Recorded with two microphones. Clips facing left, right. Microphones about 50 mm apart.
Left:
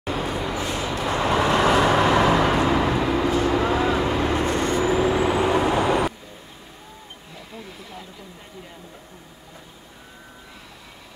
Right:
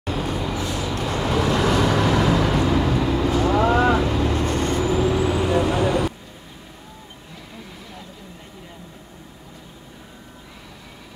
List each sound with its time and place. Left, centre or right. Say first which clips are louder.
0.0 s vehicle: even; centre
0.7 s vehicle: even; left